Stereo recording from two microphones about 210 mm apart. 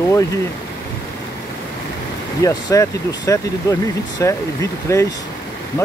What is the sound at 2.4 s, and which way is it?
Speech, 15° left (ahead or behind).